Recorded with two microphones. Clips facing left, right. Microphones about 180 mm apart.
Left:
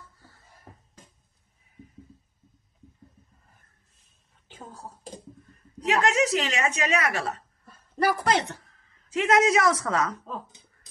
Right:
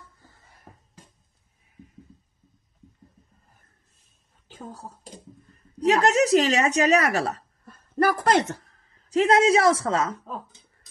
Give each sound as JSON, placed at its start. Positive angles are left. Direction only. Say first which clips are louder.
{"t": 5.8, "sound": "speech", "louder": "right 4 dB", "side_deg": -35}